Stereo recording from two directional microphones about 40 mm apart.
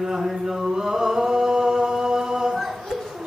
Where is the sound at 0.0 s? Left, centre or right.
Centre.